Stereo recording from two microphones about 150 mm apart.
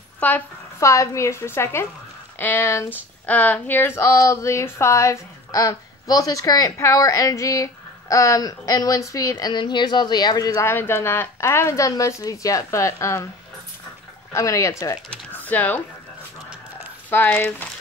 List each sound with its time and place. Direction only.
0.2 s a woman's voice: 15° left (ahead or behind)
14.3 s speech: 20° left (ahead or behind)
17.1 s a woman's voice: 15° left (ahead or behind)